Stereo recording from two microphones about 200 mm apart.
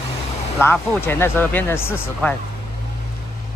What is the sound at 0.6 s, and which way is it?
Speech, 5° left (ahead or behind).